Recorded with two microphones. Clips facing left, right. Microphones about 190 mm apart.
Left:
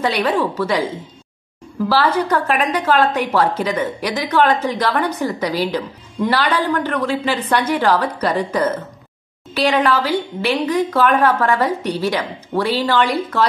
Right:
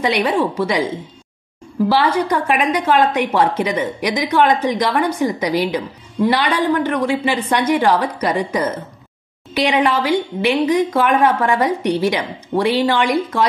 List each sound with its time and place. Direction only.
0.0 s a woman's voice: 15° right (ahead or behind)
1.9 s a woman's voice: 15° right (ahead or behind)